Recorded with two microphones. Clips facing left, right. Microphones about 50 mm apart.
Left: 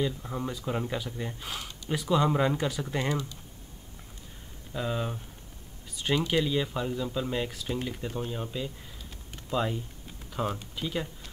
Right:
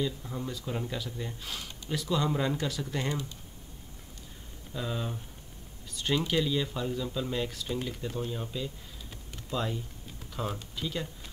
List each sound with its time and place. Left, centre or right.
0.0 s speech: left
4.7 s speech: centre